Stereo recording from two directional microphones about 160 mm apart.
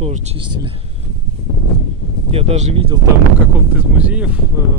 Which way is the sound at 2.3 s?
40° right (ahead or behind).